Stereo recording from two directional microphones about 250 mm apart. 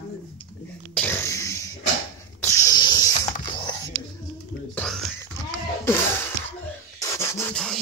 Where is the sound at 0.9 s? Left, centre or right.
Centre.